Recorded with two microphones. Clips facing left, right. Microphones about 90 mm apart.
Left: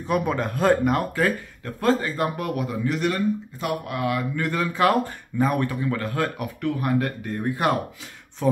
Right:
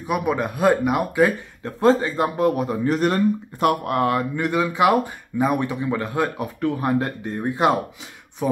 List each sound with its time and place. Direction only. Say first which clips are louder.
0.0 s speech: right 1 dB; 10° right (ahead or behind)
1.6 s speech: right 5 dB; 25° right (ahead or behind); by 3.2 s 40° right (ahead or behind)
3.5 s speech: right 8 dB; 55° right (ahead or behind)
4.4 s speech: right 2 dB; 15° right (ahead or behind)